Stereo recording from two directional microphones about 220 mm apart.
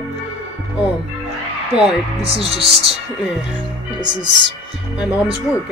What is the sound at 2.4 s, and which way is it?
Speech, 25° right (ahead or behind).